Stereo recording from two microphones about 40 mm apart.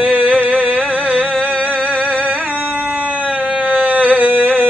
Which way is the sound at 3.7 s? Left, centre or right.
Right.